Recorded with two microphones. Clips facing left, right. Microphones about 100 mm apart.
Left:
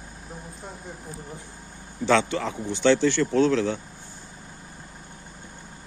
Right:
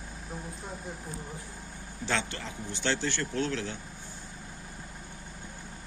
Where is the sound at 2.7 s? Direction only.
90° left.